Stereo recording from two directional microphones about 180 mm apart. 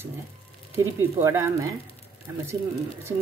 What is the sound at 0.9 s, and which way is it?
Speech, 15° right (ahead or behind).